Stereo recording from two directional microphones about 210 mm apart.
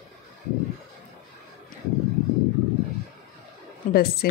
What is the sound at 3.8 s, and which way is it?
Speech, 40° left (ahead or behind).